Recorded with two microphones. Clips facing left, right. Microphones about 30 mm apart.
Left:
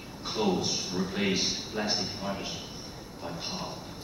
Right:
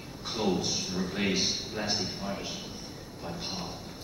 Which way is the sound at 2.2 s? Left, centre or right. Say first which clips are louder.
Left 1 dB; centre.